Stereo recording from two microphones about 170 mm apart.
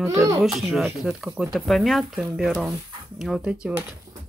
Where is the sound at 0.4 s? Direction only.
Centre (ahead or behind).